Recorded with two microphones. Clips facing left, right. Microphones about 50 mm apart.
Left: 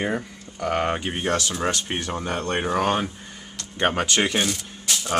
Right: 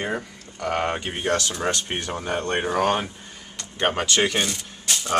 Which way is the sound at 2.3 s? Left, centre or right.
Centre.